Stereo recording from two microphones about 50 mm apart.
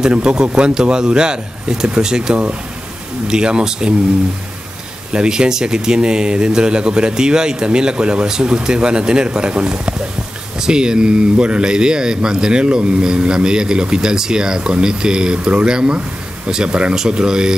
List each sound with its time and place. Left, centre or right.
0.0 s speech: centre
5.1 s speech: centre